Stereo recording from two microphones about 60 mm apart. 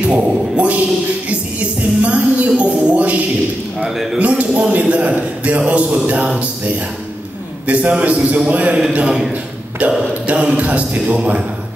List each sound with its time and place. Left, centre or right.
0.0 s speech: right
1.3 s music: right
3.8 s a man's voice: centre
4.2 s a man's voice: right
6.4 s music: right
7.6 s a man's voice: right
9.3 s a sound: right
10.2 s a man's voice: right